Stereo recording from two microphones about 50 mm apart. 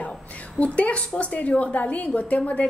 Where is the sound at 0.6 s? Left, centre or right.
Left.